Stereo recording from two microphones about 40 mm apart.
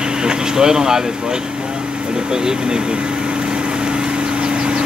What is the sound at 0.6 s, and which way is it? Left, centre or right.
Speech, centre.